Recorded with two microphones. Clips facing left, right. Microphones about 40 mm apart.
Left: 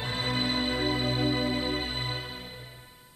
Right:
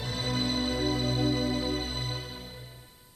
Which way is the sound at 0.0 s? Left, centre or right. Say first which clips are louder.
Left 2 dB; left.